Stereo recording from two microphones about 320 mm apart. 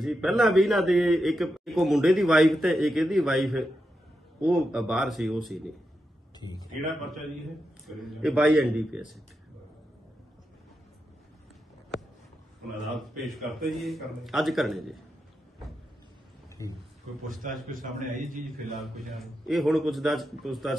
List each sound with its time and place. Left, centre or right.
0.0 s a man's voice: centre
7.8 s a man's voice: centre
12.9 s a man's voice: centre
16.6 s a man's voice: centre
17.3 s a man's voice: right
18.8 s a man's voice: centre